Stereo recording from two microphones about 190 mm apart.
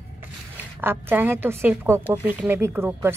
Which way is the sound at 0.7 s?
10° right (ahead or behind).